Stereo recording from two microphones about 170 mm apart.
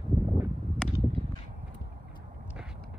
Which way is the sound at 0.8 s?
5° left (ahead or behind).